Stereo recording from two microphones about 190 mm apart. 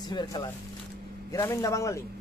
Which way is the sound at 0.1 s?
20° left (ahead or behind).